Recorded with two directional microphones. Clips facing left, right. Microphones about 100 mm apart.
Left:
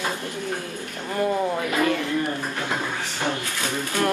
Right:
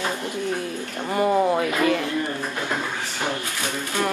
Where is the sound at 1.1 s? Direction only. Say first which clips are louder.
Right 4 dB; 15° right (ahead or behind).